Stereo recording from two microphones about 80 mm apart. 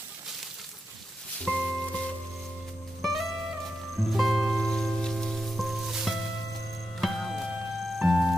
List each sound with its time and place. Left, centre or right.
1.4 s music: centre